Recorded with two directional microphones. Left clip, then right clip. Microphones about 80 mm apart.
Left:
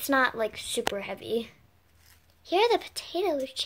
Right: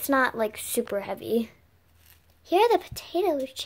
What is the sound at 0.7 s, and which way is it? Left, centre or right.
Speech, right.